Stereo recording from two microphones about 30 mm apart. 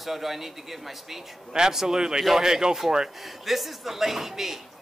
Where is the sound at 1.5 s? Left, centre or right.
Right.